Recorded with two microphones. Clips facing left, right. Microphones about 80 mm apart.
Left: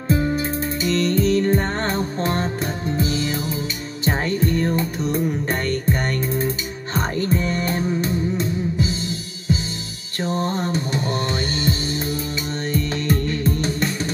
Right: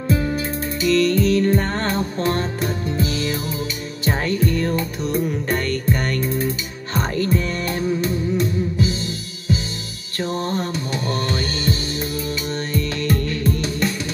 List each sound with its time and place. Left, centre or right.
0.1 s music: left
12.7 s music: left